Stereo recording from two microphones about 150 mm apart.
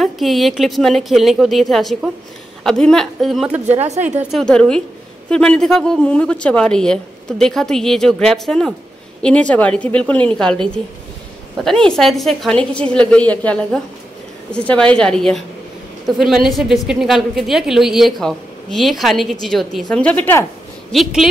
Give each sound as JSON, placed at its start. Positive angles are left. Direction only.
{"t": 0.0, "sound": "speech", "side_deg": 0}
{"t": 3.6, "sound": "a woman's voice", "side_deg": -45}
{"t": 4.2, "sound": "speech", "side_deg": 0}
{"t": 20.9, "sound": "speech", "side_deg": 0}